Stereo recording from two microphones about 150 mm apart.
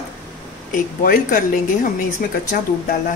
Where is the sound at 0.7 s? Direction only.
65° left (ahead or behind).